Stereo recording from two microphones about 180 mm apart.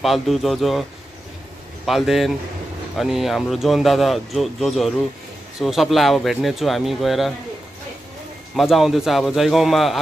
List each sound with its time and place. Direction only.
0.0 s speech: centre (ahead or behind)
1.9 s speech: centre (ahead or behind)
8.5 s speech: centre (ahead or behind)